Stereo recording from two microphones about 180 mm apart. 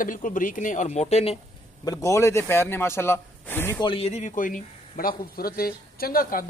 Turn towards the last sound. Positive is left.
turn(degrees=50)  # may be behind; listen again after turning